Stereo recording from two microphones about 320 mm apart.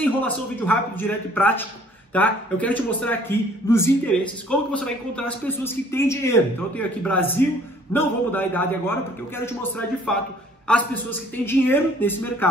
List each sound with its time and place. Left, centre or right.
0.0 s a man's voice: centre